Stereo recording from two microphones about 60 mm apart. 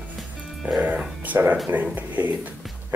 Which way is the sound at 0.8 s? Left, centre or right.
Right.